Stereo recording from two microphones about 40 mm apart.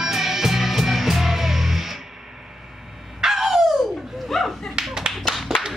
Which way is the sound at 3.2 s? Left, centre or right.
Centre.